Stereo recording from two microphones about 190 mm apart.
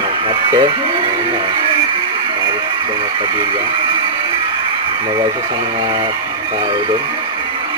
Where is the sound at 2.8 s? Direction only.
25° right (ahead or behind).